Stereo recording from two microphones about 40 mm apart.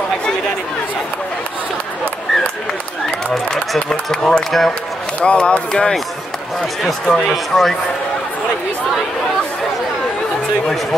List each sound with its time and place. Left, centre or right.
4.1 s speech: centre
5.2 s speech: left
7.1 s speech: centre